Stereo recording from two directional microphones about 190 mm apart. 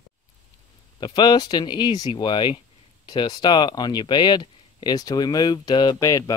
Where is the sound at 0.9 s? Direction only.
25° left (ahead or behind).